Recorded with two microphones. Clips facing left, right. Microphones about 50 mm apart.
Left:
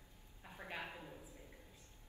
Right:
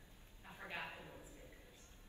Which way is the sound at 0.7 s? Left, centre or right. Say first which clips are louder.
Left 1 dB; left.